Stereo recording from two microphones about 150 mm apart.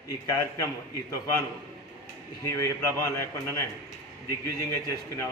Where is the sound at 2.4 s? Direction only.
20° left (ahead or behind).